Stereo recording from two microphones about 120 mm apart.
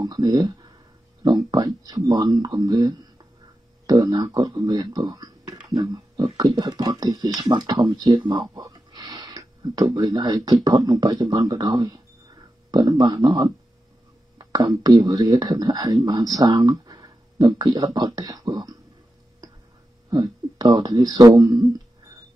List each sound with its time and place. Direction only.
0.0 s speech: 35° right (ahead or behind)
14.4 s speech: 30° right (ahead or behind)
16.6 s a sound: 40° right (ahead or behind)
17.6 s speech: 35° right (ahead or behind)
20.1 s speech: 35° right (ahead or behind)